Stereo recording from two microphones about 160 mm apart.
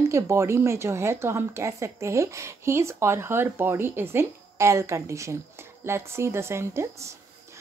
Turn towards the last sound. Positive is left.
turn(degrees=-15)  # may be behind; listen again after turning